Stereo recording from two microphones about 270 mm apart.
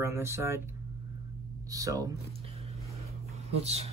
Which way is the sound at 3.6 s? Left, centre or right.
Right.